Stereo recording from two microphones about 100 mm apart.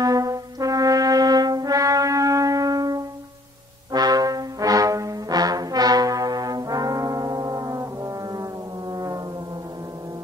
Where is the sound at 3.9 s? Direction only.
40° right (ahead or behind).